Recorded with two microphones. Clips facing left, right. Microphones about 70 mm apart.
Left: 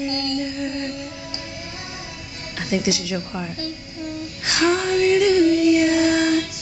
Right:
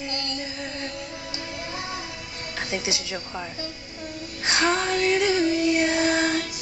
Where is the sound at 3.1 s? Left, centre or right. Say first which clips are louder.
Left 5 dB; centre.